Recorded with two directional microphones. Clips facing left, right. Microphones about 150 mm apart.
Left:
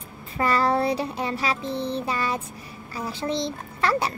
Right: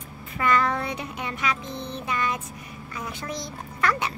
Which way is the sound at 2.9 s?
30° left (ahead or behind).